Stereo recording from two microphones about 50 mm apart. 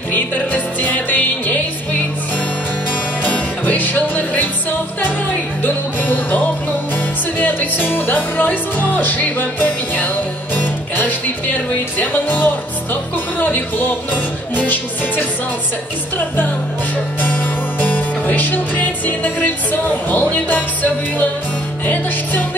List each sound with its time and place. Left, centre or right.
0.1 s music: left
3.6 s music: left
12.9 s speech: left
17.2 s music: left